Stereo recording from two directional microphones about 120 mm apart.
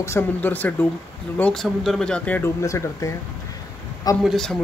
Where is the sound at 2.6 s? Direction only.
25° left (ahead or behind).